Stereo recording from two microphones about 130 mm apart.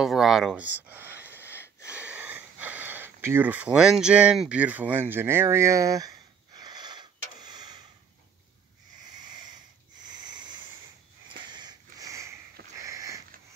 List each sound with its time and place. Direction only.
0.0 s speech: centre (ahead or behind)
1.9 s sniff: 10° right (ahead or behind); by 7.8 s 35° right (ahead or behind)
10.2 s a sound: 35° right (ahead or behind)
11.5 s sniff: 30° right (ahead or behind)